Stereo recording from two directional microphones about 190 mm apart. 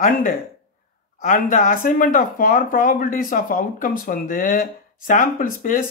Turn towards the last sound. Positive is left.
turn(degrees=45)  # may be behind; listen again after turning